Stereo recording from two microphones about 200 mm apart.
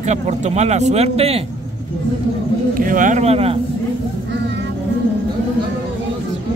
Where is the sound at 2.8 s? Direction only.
40° right (ahead or behind).